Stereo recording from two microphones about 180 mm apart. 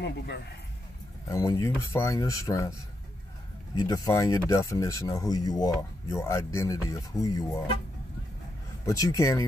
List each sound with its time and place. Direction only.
1.3 s speech: 20° left (ahead or behind)
3.7 s speech: 20° left (ahead or behind)
8.8 s speech: 20° left (ahead or behind)